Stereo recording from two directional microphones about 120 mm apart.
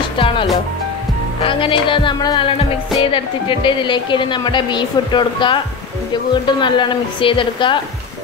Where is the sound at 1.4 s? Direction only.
45° left (ahead or behind).